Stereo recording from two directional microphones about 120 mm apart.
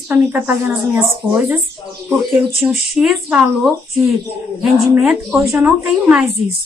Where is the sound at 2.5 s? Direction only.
Centre (ahead or behind).